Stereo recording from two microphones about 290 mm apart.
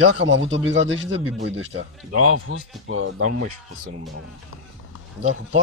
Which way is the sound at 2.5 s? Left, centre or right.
Right.